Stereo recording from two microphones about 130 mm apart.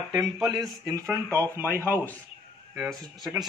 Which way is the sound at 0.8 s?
25° right (ahead or behind).